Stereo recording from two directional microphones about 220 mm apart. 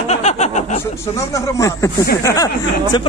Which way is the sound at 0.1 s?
30° left (ahead or behind).